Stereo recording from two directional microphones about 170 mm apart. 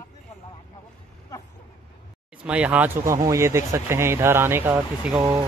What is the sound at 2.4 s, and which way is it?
Speech, 5° right (ahead or behind).